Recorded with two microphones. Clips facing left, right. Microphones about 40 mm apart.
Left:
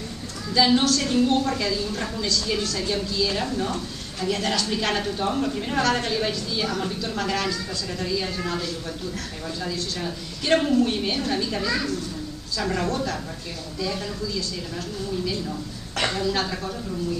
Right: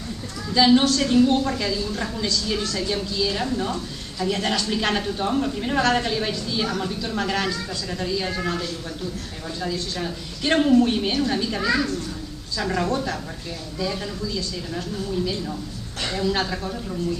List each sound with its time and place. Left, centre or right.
0.5 s a woman's voice: centre
6.1 s a woman's voice: centre
16.2 s a woman's voice: centre